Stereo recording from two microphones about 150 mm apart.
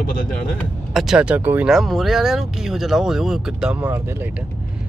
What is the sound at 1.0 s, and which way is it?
Speech, 5° right (ahead or behind).